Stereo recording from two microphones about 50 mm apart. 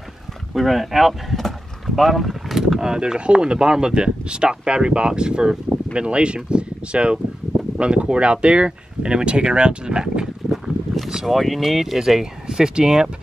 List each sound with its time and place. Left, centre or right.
0.6 s speech: centre
2.0 s vehicle: centre
2.8 s speech: centre
10.5 s speech: centre